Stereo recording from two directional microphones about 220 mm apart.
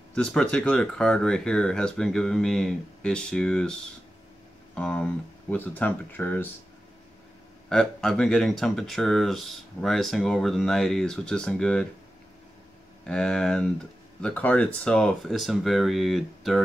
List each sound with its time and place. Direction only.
0.1 s speech: 5° left (ahead or behind)
4.7 s speech: 5° left (ahead or behind)
7.7 s speech: 5° left (ahead or behind)
13.0 s speech: 5° left (ahead or behind)